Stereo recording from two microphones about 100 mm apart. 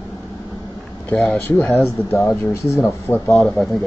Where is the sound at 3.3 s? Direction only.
5° left (ahead or behind).